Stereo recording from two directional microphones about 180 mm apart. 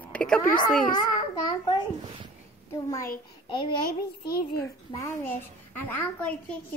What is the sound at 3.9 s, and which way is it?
Child singing, 60° left (ahead or behind).